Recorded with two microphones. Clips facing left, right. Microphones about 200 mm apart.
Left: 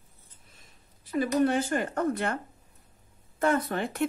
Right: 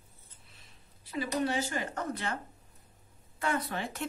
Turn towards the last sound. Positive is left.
turn(degrees=55)  # may be behind; listen again after turning